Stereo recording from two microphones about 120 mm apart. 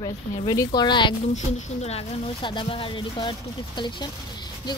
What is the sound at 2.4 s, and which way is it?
Speech, 45° left (ahead or behind).